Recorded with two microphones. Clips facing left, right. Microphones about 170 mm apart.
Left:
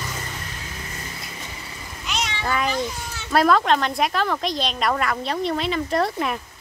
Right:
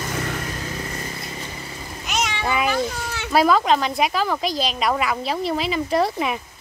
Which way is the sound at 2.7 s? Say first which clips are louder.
Right 3 dB; 70° right (ahead or behind).